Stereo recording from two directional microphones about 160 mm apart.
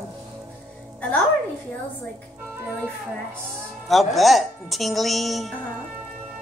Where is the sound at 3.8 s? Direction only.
Centre (ahead or behind).